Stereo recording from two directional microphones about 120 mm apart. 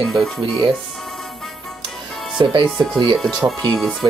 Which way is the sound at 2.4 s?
40° right (ahead or behind).